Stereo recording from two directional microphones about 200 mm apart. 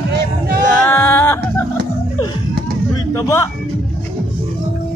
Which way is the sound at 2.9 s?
15° left (ahead or behind).